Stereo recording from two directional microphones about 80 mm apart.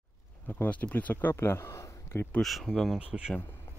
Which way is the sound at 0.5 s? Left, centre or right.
Left.